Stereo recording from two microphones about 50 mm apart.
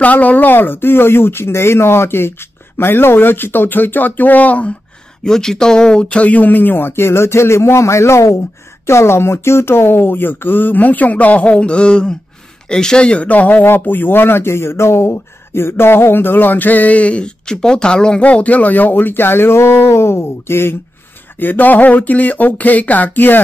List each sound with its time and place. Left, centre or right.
0.0 s speech: left
5.2 s speech: centre
18.2 s speech: left
21.4 s speech: left